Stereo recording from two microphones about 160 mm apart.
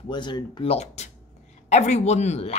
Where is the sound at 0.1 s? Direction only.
30° left (ahead or behind).